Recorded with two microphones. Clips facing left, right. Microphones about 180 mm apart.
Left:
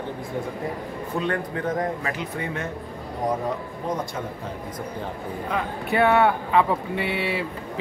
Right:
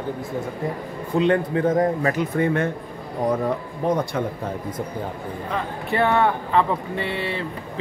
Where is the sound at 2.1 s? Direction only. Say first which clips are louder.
Right 9 dB; 50° right (ahead or behind).